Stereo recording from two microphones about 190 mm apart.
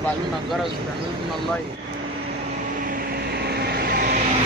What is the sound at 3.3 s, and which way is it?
Vehicle, 55° right (ahead or behind).